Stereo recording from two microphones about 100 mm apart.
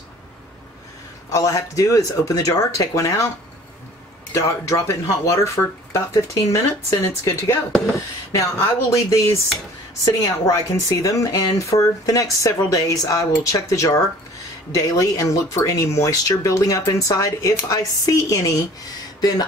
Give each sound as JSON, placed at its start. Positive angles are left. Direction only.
{"t": 1.3, "sound": "speech", "side_deg": 35}
{"t": 4.3, "sound": "speech", "side_deg": 30}